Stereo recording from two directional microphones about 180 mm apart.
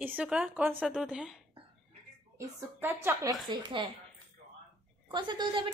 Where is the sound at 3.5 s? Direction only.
25° right (ahead or behind).